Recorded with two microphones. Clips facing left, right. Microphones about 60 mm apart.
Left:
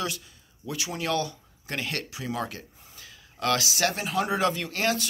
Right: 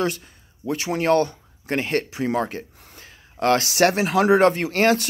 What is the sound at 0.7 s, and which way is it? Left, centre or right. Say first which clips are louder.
Speech: right 10 dB; right.